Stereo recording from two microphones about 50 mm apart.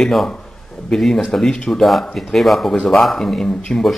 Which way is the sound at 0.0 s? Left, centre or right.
Centre.